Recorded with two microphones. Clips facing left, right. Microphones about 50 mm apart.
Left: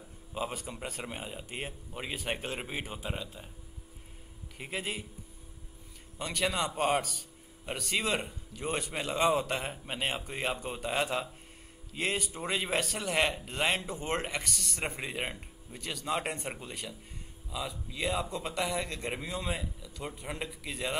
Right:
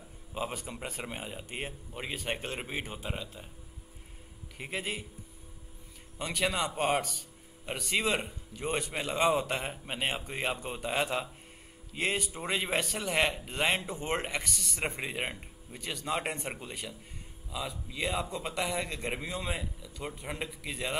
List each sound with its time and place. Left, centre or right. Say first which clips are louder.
0.3 s a man's voice: even; centre
4.6 s a man's voice: right 1 dB; centre
6.1 s a man's voice: even; centre